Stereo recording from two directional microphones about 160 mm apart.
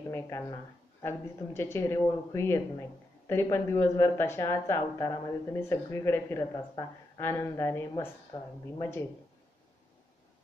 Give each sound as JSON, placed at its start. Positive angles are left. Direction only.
{"t": 0.1, "sound": "speech", "side_deg": 15}
{"t": 8.3, "sound": "speech", "side_deg": 25}